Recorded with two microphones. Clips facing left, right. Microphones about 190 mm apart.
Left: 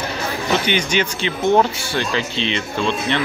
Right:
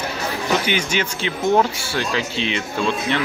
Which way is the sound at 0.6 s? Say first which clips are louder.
Left 2 dB; 5° right (ahead or behind).